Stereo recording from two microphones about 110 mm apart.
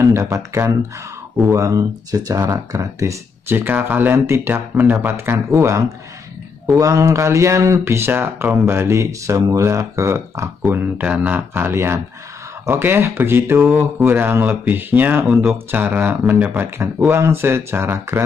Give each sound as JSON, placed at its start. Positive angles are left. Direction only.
{"t": 0.0, "sound": "speech", "side_deg": -25}
{"t": 3.5, "sound": "speech", "side_deg": -20}